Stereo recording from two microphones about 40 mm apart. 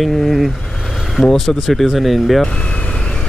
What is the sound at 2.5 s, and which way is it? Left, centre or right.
Vehicle, left.